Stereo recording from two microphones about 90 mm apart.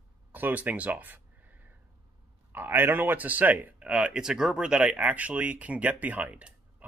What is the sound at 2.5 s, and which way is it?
Speech, 25° right (ahead or behind).